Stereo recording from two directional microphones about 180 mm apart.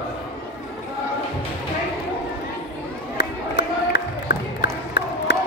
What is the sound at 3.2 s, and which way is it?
Crowd, 65° left (ahead or behind).